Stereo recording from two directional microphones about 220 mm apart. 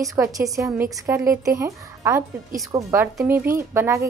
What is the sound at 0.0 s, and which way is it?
A woman's voice, 15° right (ahead or behind).